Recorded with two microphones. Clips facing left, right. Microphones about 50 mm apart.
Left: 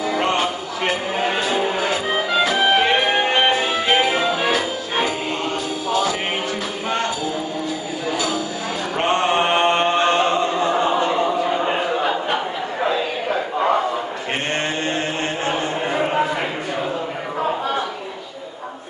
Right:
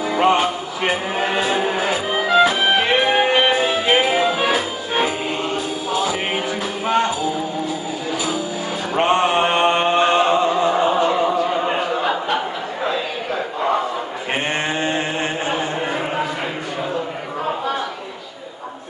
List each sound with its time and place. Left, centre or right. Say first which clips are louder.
0.2 s music: right 4 dB; centre
1.6 s music: right 1 dB; centre
8.9 s chant: right 2 dB; centre